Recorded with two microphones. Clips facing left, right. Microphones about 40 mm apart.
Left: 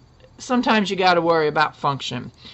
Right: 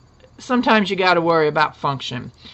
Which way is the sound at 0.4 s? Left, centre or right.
Centre.